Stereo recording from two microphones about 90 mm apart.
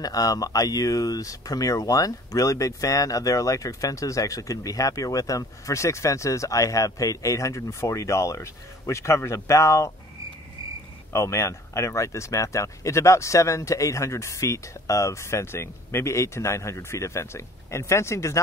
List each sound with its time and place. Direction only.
0.0 s speech: 45° left (ahead or behind)
11.1 s speech: 35° left (ahead or behind)